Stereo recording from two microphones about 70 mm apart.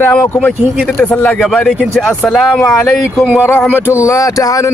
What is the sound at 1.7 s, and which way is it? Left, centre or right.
Speech, centre.